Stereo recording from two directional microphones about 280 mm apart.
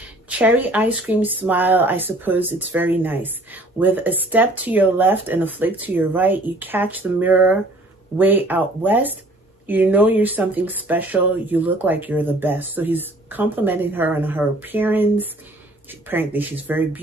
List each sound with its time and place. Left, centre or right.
0.4 s speech: centre